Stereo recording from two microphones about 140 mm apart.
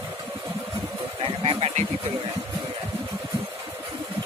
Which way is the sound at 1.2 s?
40° right (ahead or behind).